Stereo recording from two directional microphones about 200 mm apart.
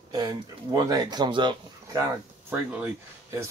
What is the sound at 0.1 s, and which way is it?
Speech, 20° right (ahead or behind).